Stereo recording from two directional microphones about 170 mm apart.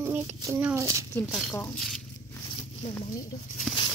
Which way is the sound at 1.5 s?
15° left (ahead or behind).